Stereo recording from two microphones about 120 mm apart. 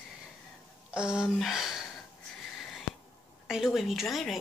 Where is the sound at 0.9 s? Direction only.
5° right (ahead or behind).